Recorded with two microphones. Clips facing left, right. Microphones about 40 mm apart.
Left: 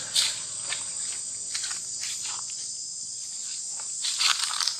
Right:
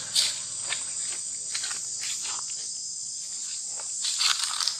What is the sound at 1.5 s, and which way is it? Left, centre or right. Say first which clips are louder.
Cricket: right 1 dB; centre.